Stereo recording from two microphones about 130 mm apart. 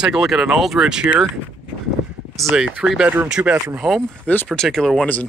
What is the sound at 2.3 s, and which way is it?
Speech, 5° right (ahead or behind).